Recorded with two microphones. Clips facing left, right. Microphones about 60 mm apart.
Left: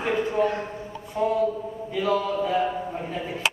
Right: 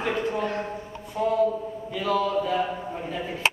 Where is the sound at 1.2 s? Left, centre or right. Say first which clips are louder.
Left 1 dB; left.